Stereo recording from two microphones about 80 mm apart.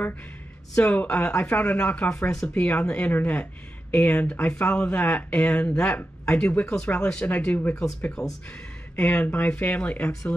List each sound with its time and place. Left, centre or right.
0.7 s speech: centre
8.2 s speech: centre
8.9 s speech: centre